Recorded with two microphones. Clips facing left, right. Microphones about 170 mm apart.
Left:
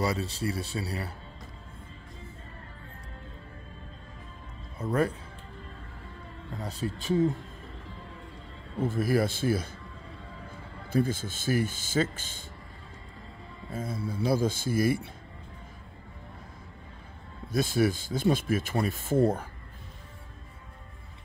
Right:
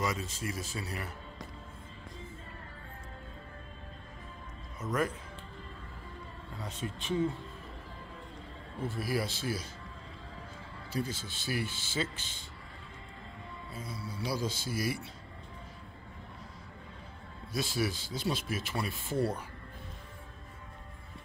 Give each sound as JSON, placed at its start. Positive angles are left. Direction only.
{"t": 0.0, "sound": "speech", "side_deg": 35}
{"t": 4.7, "sound": "speech", "side_deg": 30}
{"t": 6.5, "sound": "speech", "side_deg": 35}
{"t": 8.8, "sound": "speech", "side_deg": 50}
{"t": 10.9, "sound": "speech", "side_deg": 50}
{"t": 13.7, "sound": "speech", "side_deg": 50}
{"t": 17.5, "sound": "speech", "side_deg": 50}